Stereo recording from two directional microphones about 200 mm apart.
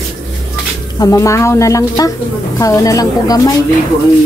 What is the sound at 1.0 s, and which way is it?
A woman's voice, 15° left (ahead or behind).